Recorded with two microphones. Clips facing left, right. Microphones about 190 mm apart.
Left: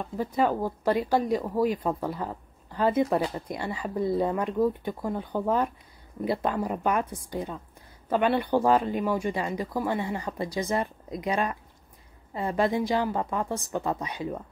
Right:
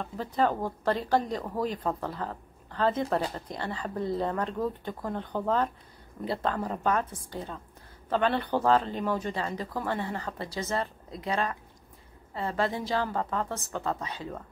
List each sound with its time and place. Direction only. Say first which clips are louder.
0.0 s speech: left 2 dB; 10° left (ahead or behind)